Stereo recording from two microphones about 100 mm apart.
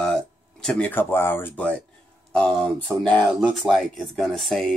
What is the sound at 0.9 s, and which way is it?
Speech, 20° left (ahead or behind).